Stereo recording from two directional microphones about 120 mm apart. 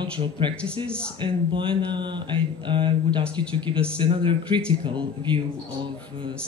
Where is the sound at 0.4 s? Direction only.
45° right (ahead or behind).